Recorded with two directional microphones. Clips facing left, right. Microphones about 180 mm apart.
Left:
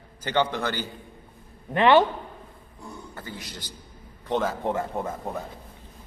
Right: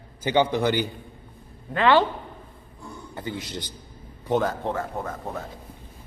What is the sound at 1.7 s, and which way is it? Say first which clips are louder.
Speech: left 1 dB; 20° left (ahead or behind).